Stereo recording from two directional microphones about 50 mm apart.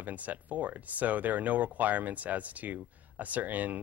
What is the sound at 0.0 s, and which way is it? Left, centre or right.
Speech, right.